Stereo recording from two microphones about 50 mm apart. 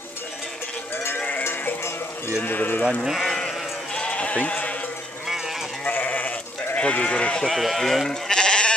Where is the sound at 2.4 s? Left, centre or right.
Left.